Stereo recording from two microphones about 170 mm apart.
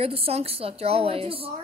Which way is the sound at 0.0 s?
35° right (ahead or behind).